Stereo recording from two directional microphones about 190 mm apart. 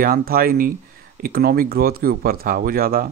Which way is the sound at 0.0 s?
50° right (ahead or behind).